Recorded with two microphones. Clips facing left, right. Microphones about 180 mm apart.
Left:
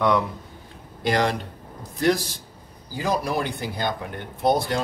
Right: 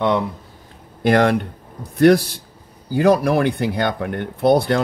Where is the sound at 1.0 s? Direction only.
55° right (ahead or behind).